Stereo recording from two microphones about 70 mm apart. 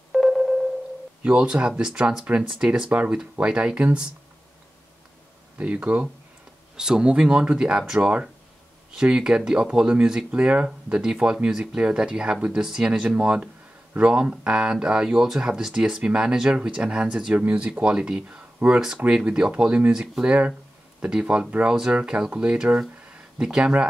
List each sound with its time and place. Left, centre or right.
0.1 s a sound: centre
1.2 s speech: centre
5.6 s speech: centre
18.6 s speech: right